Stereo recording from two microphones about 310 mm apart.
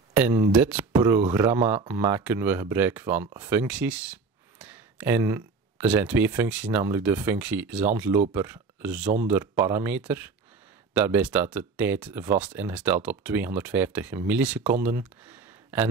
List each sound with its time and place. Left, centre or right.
0.1 s speech: centre